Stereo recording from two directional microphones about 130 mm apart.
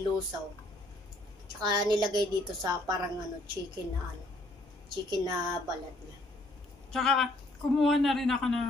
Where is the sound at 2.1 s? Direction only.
30° right (ahead or behind).